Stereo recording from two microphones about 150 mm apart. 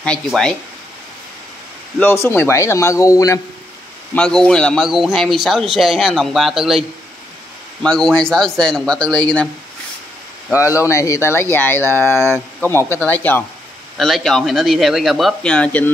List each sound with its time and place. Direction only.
0.0 s speech: 5° left (ahead or behind)
2.0 s speech: 15° left (ahead or behind)
4.1 s speech: 5° left (ahead or behind)
7.8 s speech: 5° left (ahead or behind)
10.7 s speech: 20° left (ahead or behind)
13.9 s speech: centre (ahead or behind)